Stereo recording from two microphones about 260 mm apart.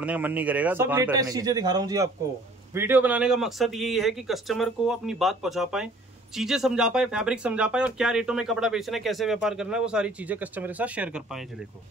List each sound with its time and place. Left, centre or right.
0.0 s speech: centre